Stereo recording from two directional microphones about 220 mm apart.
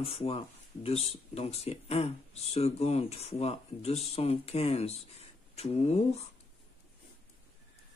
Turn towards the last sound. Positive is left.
turn(degrees=30)  # may be behind; listen again after turning